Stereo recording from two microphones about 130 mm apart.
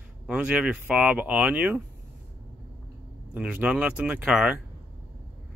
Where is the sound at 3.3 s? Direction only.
10° right (ahead or behind).